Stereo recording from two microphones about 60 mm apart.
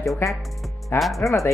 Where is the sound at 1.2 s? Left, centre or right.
Left.